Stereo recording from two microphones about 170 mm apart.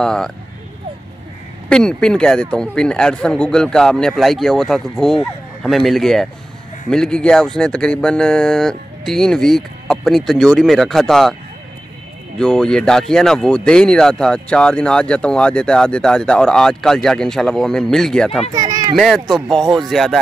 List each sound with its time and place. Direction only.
0.0 s speech: 5° left (ahead or behind)
1.7 s speech: 5° left (ahead or behind)
12.4 s speech: 5° left (ahead or behind)
18.5 s speech: 20° right (ahead or behind)
18.9 s speech: centre (ahead or behind)